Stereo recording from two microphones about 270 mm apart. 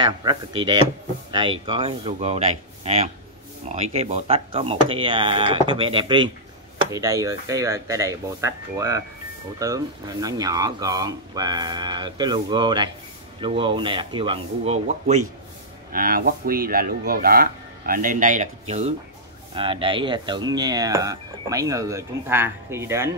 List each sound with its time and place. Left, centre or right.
0.0 s speech: centre
1.7 s speech: centre